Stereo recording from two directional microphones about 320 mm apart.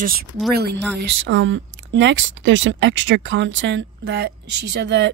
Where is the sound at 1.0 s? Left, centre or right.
Right.